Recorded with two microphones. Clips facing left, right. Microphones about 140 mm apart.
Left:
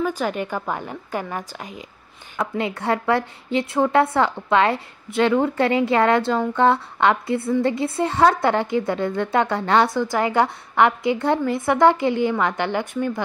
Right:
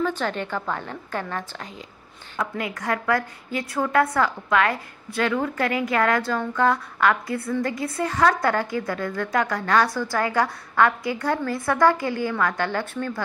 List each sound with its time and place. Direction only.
0.0 s a woman's voice: 10° left (ahead or behind)
2.3 s a woman's voice: 25° left (ahead or behind)